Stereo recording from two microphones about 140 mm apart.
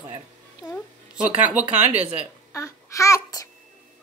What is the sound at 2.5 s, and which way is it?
Child singing, 20° left (ahead or behind).